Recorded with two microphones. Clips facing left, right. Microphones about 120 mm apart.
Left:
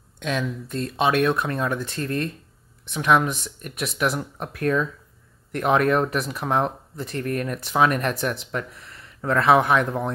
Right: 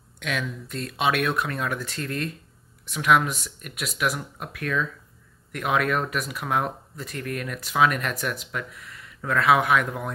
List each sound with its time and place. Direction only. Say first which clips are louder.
0.2 s speech: left 4 dB; 30° left (ahead or behind)
4.4 s speech: left 8 dB; 40° left (ahead or behind)